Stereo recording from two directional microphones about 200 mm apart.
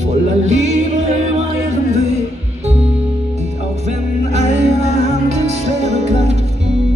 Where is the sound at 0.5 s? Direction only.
35° right (ahead or behind).